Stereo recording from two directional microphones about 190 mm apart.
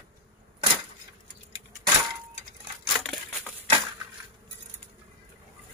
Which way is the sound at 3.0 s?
5° left (ahead or behind).